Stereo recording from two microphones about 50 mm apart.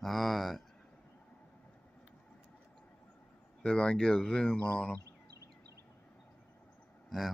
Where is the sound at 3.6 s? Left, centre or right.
Centre.